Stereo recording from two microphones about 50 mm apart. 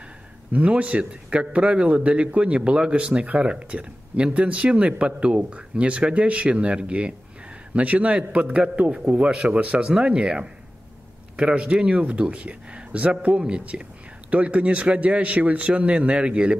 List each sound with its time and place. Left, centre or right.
0.5 s a man's voice: right